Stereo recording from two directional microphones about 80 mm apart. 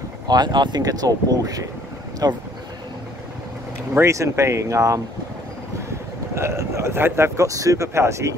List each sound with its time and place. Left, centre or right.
0.3 s speech: right
4.0 s speech: right
6.3 s speech: right